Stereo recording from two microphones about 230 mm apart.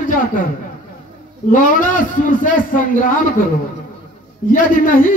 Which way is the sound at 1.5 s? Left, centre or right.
Left.